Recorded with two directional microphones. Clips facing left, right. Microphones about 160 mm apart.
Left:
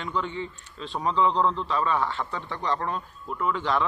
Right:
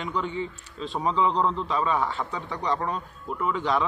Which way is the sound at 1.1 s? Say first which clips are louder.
Left 1 dB; 5° right (ahead or behind).